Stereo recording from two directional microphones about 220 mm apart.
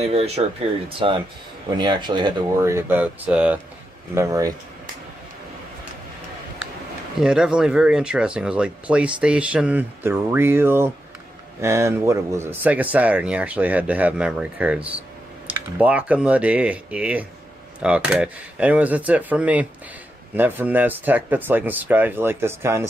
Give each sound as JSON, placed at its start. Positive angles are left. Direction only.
{"t": 0.1, "sound": "speech", "side_deg": -30}
{"t": 7.2, "sound": "speech", "side_deg": -5}